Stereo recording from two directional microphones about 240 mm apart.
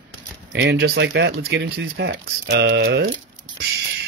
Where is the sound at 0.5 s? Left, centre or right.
Right.